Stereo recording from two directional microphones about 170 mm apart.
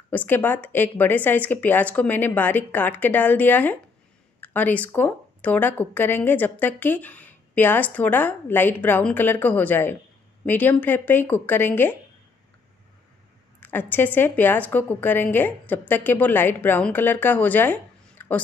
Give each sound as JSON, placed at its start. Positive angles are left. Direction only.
{"t": 0.1, "sound": "speech", "side_deg": 10}
{"t": 13.6, "sound": "speech", "side_deg": 10}